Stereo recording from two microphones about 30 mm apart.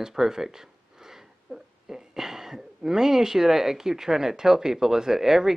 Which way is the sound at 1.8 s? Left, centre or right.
Centre.